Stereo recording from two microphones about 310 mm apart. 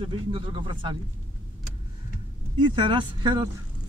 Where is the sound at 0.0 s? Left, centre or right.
Centre.